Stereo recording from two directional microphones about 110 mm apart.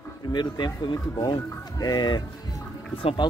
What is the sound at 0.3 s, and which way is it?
Speech, 45° left (ahead or behind).